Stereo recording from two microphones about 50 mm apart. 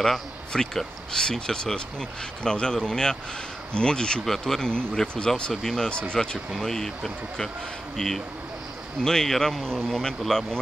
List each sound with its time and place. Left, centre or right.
0.0 s speech: centre
5.5 s speech: centre
5.8 s speech: centre